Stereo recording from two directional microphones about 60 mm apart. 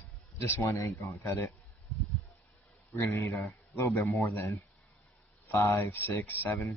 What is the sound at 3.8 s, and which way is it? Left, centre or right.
Speech, left.